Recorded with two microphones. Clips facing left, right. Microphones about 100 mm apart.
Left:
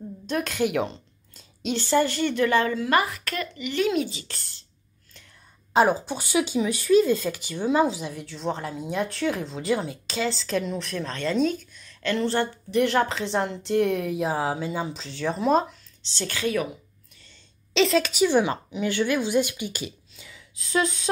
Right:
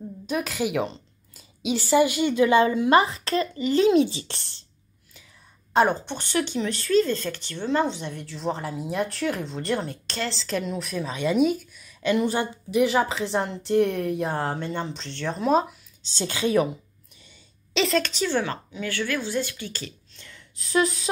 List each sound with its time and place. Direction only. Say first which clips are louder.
0.3 s speech: left 1 dB; 5° right (ahead or behind); by 4.4 s 30° right (ahead or behind)
5.7 s speech: left 1 dB; 5° left (ahead or behind)
16.2 s a woman's voice: right 4 dB; 20° right (ahead or behind)
17.7 s a woman's voice: left 3 dB; centre (ahead or behind)